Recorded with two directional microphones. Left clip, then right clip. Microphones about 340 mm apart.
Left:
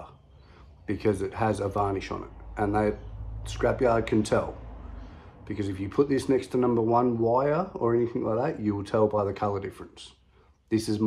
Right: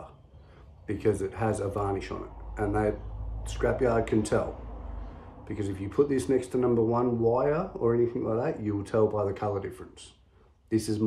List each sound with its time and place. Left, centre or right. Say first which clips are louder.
0.8 s speech: left 1 dB; centre
5.5 s speech: left 2 dB; centre